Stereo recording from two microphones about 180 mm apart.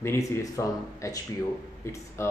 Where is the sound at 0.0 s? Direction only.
15° left (ahead or behind).